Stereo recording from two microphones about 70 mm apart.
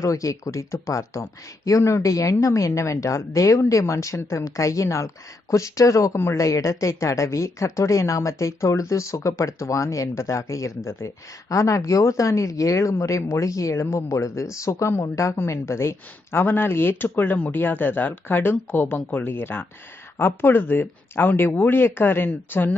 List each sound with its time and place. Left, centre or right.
0.0 s speech: left